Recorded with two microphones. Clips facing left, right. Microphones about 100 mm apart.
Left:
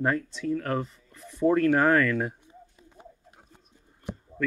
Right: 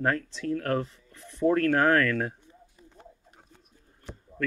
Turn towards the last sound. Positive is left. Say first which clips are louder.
# left 7 dB
turn(degrees=15)  # may be behind; listen again after turning